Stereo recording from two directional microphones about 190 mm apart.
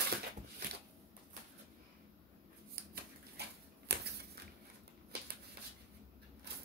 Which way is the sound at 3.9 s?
60° right (ahead or behind).